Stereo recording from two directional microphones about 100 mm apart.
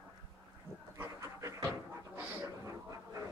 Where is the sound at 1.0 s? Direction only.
30° right (ahead or behind).